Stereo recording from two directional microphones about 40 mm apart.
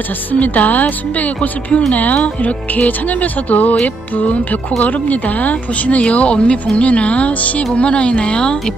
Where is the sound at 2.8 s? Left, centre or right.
Left.